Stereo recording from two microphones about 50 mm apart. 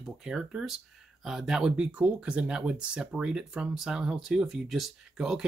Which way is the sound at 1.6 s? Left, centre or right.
Right.